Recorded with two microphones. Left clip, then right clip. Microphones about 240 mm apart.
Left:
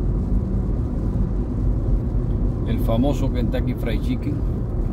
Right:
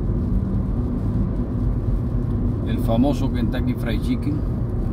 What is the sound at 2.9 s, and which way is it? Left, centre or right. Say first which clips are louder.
Vehicle: right 1 dB; centre.